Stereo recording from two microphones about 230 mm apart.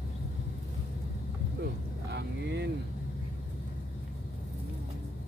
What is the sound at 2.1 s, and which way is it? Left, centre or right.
Vehicle, right.